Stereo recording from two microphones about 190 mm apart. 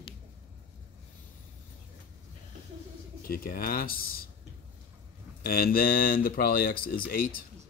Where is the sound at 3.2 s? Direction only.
50° left (ahead or behind).